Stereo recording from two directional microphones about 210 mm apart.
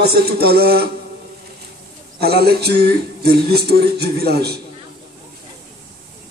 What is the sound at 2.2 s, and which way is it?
A man's voice, 50° right (ahead or behind).